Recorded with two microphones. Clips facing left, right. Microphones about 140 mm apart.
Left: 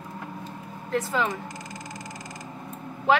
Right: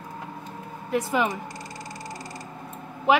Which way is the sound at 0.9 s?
15° right (ahead or behind).